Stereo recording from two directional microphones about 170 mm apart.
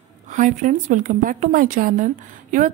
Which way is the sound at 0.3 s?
50° right (ahead or behind).